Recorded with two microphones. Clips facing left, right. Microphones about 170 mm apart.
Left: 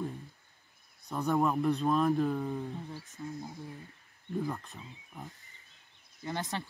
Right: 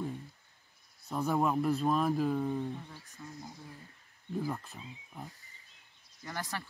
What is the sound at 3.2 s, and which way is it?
Speech, 15° left (ahead or behind).